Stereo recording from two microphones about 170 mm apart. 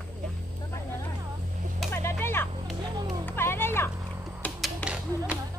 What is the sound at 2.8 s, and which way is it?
Music, 25° right (ahead or behind).